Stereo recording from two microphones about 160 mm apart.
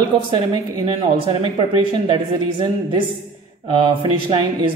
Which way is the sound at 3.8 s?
35° right (ahead or behind).